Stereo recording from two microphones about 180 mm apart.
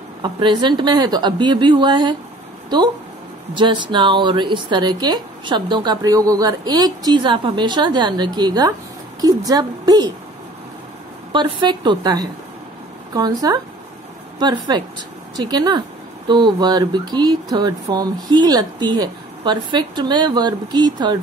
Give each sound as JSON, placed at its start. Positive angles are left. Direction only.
{"t": 0.2, "sound": "speech", "side_deg": -25}
{"t": 11.3, "sound": "speech", "side_deg": -25}